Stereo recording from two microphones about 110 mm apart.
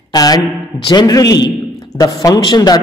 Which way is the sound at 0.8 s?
35° left (ahead or behind).